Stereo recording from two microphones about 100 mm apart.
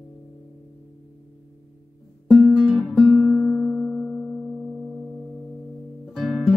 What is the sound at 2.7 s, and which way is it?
Guitar, 10° left (ahead or behind).